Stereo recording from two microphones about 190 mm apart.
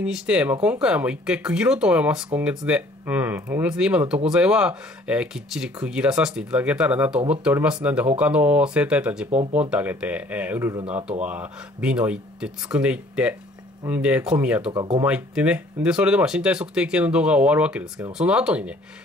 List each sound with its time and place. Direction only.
0.0 s speech: 5° right (ahead or behind)
9.3 s speech: 35° right (ahead or behind)
9.6 s speech: 10° right (ahead or behind)
14.7 s speech: 25° right (ahead or behind)
15.0 s speech: 5° right (ahead or behind)